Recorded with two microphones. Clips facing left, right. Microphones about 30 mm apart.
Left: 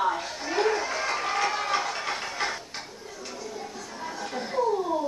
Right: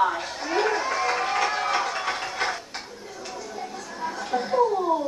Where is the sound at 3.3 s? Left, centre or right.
Right.